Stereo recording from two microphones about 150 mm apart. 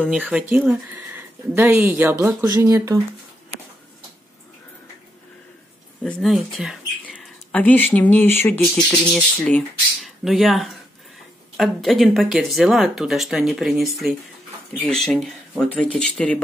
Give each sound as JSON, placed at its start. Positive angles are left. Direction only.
{"t": 0.1, "sound": "speech", "side_deg": -10}
{"t": 6.0, "sound": "speech", "side_deg": 5}
{"t": 7.2, "sound": "speech", "side_deg": 10}